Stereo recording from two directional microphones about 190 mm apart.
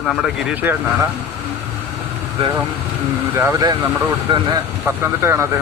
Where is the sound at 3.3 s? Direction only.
15° right (ahead or behind).